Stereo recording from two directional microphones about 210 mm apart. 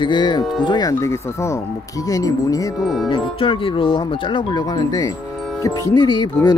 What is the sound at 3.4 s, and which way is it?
Speech, 25° left (ahead or behind).